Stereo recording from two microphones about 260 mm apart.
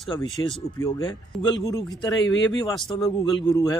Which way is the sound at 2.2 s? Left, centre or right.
Left.